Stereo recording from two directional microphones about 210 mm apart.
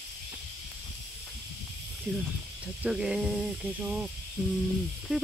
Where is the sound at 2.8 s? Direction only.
5° right (ahead or behind).